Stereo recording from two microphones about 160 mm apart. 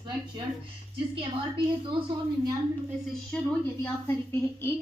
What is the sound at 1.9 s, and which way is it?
Speech, 35° right (ahead or behind).